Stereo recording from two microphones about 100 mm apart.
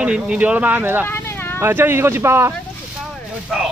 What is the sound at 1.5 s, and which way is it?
Speech, 20° right (ahead or behind).